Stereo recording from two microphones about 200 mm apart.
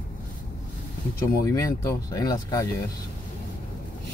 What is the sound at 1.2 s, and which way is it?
Speech, 15° left (ahead or behind).